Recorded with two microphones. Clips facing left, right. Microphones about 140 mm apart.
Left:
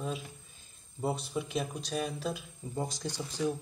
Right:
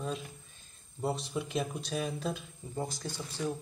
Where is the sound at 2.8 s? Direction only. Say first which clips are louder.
Left 2 dB; 15° left (ahead or behind).